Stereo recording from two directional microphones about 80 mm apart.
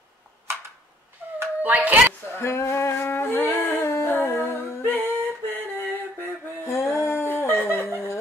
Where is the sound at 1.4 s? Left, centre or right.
Right.